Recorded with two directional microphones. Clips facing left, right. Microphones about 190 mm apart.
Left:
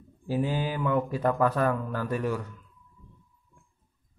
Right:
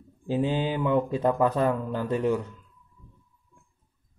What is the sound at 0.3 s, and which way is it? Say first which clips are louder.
Speech: right 3 dB; 20° right (ahead or behind).